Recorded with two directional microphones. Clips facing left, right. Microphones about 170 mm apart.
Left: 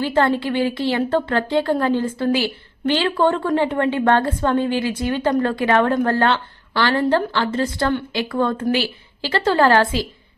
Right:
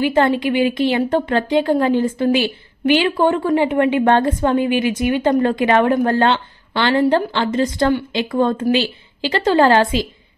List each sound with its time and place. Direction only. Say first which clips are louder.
0.0 s a woman's voice: right 3 dB; 15° right (ahead or behind)